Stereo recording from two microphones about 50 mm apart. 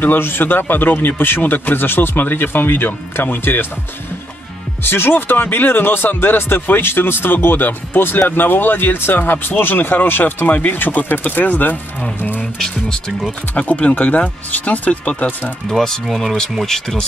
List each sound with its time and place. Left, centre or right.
0.0 s speech: left
4.8 s speech: left
12.5 s speech: centre
13.6 s speech: left
15.7 s speech: centre